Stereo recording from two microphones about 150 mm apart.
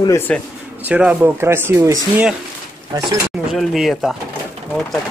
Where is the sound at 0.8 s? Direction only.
10° right (ahead or behind).